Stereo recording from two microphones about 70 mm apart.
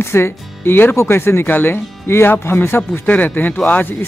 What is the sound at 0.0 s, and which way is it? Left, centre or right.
Speech, left.